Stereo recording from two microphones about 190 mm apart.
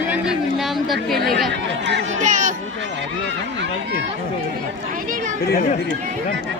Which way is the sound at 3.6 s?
65° right (ahead or behind).